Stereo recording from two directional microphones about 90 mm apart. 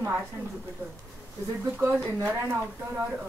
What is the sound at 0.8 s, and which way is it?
Speech, 20° right (ahead or behind).